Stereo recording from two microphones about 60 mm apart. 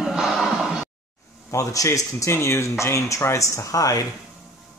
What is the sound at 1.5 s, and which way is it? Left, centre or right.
Speech, left.